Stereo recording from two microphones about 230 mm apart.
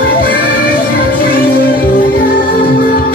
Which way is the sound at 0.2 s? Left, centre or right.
Left.